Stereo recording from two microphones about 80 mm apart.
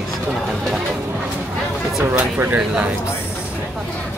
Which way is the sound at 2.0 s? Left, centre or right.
Right.